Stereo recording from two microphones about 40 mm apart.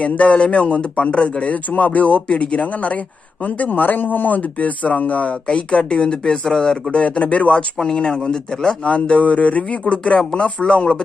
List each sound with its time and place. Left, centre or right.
0.0 s a man's voice: left
6.9 s a man's voice: left
7.8 s speech: centre
8.8 s a man's voice: left